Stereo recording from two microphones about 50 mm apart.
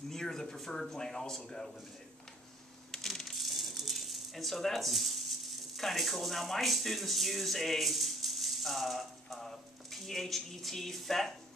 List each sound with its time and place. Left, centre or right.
0.1 s speech: centre
2.9 s rattle: centre